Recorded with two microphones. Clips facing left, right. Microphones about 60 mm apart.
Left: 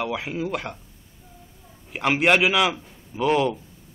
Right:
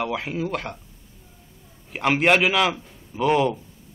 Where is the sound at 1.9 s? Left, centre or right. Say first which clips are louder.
Right 1 dB; centre.